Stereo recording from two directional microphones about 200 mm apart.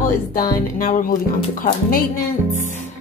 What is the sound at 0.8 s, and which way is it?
Speech, 40° left (ahead or behind).